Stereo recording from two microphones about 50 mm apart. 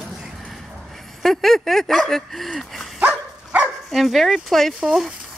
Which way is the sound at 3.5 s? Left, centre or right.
Right.